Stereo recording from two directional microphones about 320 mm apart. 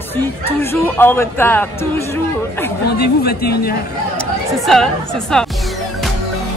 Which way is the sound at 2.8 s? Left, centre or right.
Left.